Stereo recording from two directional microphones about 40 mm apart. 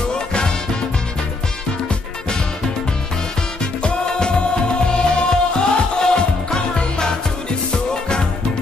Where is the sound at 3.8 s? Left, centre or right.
Left.